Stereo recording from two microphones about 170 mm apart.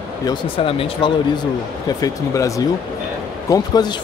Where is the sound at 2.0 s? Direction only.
20° left (ahead or behind).